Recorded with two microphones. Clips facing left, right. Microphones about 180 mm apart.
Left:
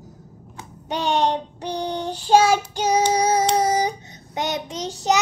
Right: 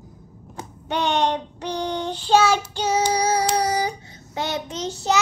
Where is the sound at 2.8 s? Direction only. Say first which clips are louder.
Left 2 dB; 20° left (ahead or behind).